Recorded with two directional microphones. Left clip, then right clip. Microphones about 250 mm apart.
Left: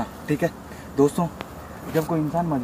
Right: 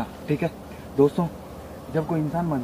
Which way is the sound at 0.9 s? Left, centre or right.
Centre.